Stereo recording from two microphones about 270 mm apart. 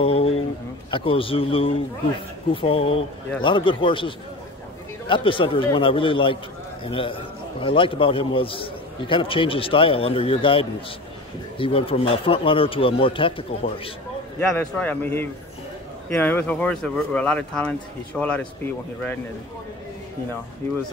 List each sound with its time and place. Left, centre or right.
0.0 s a sound: left
0.8 s a man's voice: centre
14.8 s speech: centre